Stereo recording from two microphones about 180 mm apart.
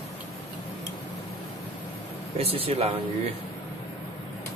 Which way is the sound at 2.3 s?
30° right (ahead or behind).